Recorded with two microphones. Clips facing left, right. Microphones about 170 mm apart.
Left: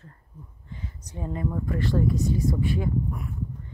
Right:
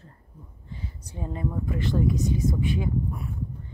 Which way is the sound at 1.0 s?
30° right (ahead or behind).